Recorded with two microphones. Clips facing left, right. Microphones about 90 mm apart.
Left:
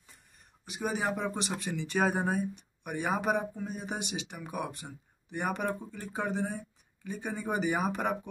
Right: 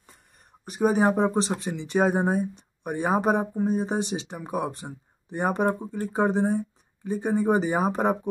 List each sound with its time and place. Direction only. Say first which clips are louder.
0.7 s speech: right 11 dB; 40° right (ahead or behind)